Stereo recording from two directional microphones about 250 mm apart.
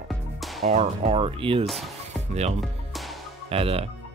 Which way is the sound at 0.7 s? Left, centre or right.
Right.